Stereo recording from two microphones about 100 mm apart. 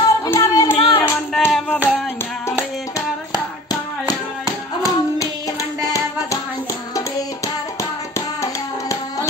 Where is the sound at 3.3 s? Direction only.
40° left (ahead or behind).